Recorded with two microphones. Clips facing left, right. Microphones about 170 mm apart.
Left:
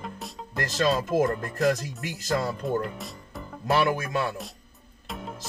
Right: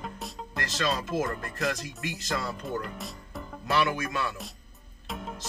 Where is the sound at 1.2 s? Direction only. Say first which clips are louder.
Left 6 dB; 40° left (ahead or behind).